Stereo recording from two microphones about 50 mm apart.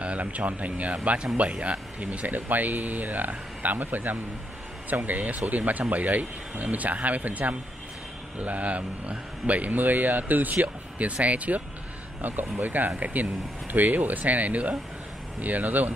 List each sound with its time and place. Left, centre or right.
0.0 s speech: right